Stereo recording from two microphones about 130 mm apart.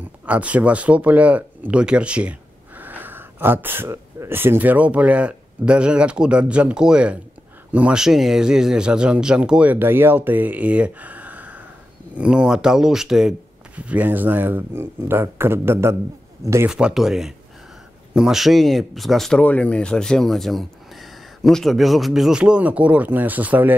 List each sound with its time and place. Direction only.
0.3 s speech: 10° right (ahead or behind)
16.6 s speech: 5° right (ahead or behind)